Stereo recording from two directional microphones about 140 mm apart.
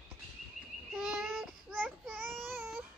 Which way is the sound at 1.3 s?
Centre (ahead or behind).